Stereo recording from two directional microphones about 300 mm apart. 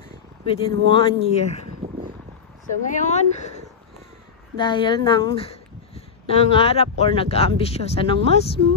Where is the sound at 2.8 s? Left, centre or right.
Left.